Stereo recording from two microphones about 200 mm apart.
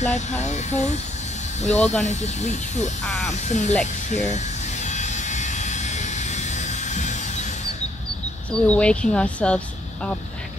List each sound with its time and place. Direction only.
0.4 s speech: 35° left (ahead or behind)
3.1 s speech: centre (ahead or behind)
3.4 s speech: 35° left (ahead or behind)
4.8 s vehicle: 35° left (ahead or behind)
8.5 s speech: 5° left (ahead or behind)